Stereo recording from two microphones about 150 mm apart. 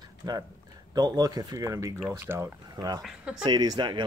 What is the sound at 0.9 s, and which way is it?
Speech, 25° right (ahead or behind).